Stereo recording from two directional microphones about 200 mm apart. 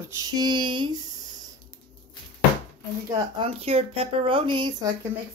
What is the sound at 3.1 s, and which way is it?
Speech, 25° right (ahead or behind).